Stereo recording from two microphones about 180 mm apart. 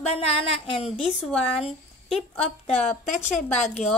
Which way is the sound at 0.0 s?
35° left (ahead or behind).